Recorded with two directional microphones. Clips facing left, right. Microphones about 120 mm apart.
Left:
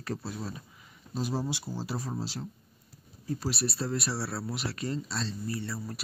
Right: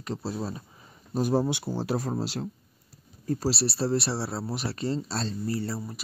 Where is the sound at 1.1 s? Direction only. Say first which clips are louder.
Right 7 dB; 55° right (ahead or behind).